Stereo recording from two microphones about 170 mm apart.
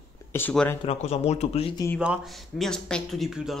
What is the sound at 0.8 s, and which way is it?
Speech, 40° left (ahead or behind).